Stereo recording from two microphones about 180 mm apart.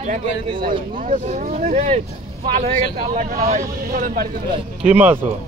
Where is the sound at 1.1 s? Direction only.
45° right (ahead or behind).